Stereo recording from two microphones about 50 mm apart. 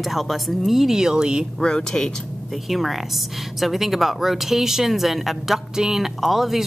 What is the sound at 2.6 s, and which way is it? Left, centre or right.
A woman's voice, centre.